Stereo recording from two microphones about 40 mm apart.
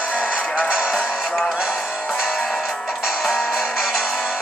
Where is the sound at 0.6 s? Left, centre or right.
Right.